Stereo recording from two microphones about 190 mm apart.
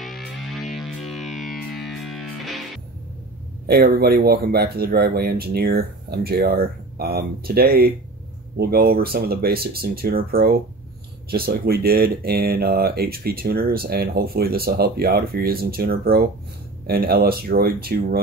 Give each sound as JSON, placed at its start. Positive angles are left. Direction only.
{"t": 0.0, "sound": "music", "side_deg": 0}
{"t": 3.6, "sound": "speech", "side_deg": -55}